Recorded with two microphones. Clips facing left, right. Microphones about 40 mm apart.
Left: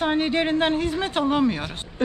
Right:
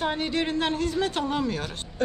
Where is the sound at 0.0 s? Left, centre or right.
Left.